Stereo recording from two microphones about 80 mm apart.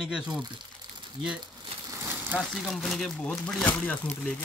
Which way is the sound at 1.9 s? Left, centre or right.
Right.